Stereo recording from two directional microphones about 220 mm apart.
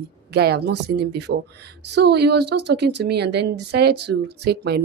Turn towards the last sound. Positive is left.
turn(degrees=-50)  # may be behind; listen again after turning